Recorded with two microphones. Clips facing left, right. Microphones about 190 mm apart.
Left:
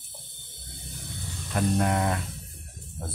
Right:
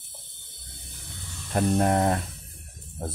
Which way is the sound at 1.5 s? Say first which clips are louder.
Right 3 dB; 35° right (ahead or behind).